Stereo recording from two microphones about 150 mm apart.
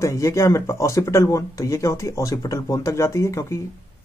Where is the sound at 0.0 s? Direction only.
20° left (ahead or behind).